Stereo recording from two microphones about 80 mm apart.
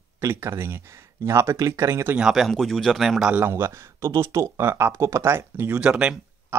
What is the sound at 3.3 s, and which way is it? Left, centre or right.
Speech, right.